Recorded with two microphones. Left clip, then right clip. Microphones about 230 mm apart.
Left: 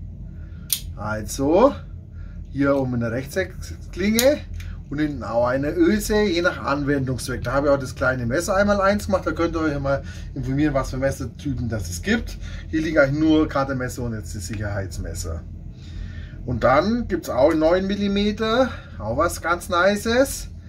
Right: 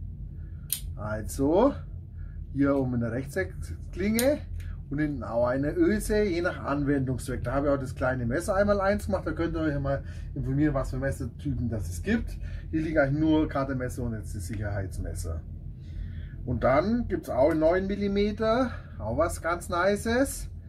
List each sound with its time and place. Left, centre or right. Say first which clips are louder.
1.0 s speech: left 4 dB; centre
9.6 s speech: left 7 dB; centre
12.7 s speech: left 7 dB; centre
16.5 s speech: left 6 dB; centre